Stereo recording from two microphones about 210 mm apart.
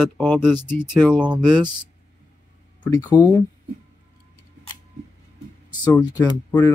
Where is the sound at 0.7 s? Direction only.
10° left (ahead or behind).